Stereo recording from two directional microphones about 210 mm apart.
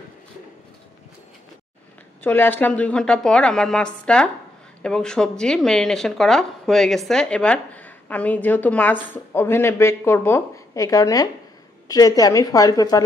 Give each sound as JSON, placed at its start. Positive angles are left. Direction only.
{"t": 2.2, "sound": "speech", "side_deg": 10}